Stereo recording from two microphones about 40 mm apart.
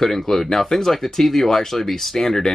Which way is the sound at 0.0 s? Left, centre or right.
Centre.